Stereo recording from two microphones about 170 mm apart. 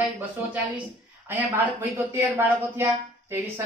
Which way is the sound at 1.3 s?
10° right (ahead or behind).